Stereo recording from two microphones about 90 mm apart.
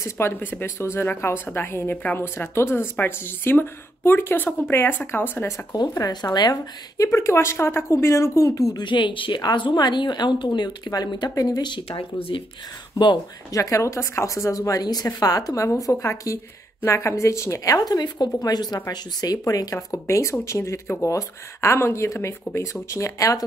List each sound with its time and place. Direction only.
0.0 s speech: 25° left (ahead or behind)
5.7 s speech: 40° left (ahead or behind)
8.7 s a woman's voice: 60° left (ahead or behind); by 12.4 s 85° left
13.5 s speech: 35° left (ahead or behind)
17.7 s speech: 45° left (ahead or behind)